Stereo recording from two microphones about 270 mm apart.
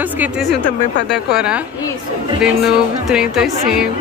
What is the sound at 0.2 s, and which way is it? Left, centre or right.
Speech, centre.